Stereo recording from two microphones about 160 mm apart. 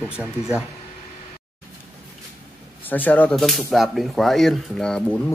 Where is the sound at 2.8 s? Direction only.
10° left (ahead or behind).